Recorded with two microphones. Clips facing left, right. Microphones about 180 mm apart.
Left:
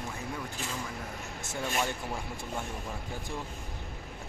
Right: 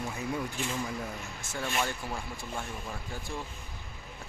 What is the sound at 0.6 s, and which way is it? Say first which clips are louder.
Speech: right 4 dB; 40° left (ahead or behind).